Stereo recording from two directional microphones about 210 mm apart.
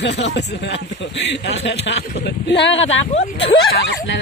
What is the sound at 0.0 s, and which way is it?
A man's voice, 55° left (ahead or behind).